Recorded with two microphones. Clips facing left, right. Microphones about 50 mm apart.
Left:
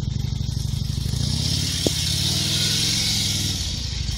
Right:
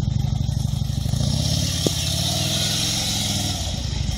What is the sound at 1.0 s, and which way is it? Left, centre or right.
Vehicle, centre.